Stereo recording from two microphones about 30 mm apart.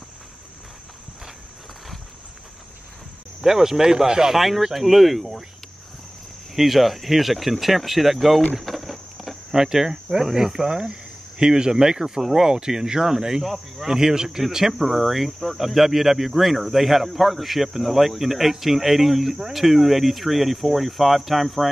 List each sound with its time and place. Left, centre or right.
3.4 s speech: centre
4.4 s speech: centre
6.5 s speech: centre
8.5 s patter: centre
9.5 s speech: centre
12.2 s speech: centre
12.4 s speech: right
13.9 s speech: right
14.8 s speech: centre